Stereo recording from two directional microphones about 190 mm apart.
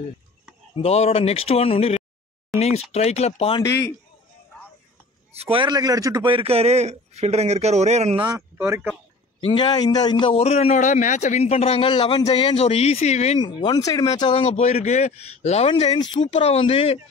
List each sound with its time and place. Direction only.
0.8 s a man's voice: 35° left (ahead or behind)
3.6 s a man's voice: 15° left (ahead or behind)
5.3 s a man's voice: 30° right (ahead or behind)
8.3 s speech: 15° right (ahead or behind)
9.4 s a man's voice: 25° left (ahead or behind)
13.4 s a man's voice: 25° left (ahead or behind)